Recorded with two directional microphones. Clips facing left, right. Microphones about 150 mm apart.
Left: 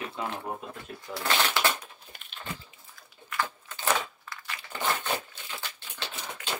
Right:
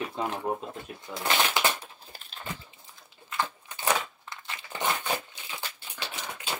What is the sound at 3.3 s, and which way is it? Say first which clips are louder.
Crumpling: right 1 dB; 20° right (ahead or behind).